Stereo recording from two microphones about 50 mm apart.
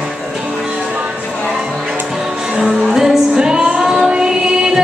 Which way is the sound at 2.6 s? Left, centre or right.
Centre.